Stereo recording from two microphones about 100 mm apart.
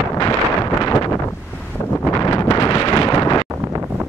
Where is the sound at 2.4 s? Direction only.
50° left (ahead or behind).